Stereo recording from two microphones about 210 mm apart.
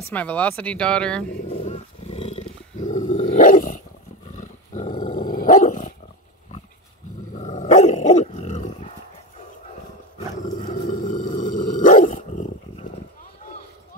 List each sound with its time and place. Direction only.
0.1 s speech: 5° left (ahead or behind)
1.5 s roar: 35° left (ahead or behind)
4.4 s dog: 35° left (ahead or behind)
5.1 s dog: 45° left (ahead or behind)
7.3 s dog: 35° left (ahead or behind)
10.6 s dog: 40° left (ahead or behind)